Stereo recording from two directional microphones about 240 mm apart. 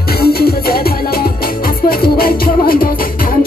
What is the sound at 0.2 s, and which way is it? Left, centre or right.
Music, left.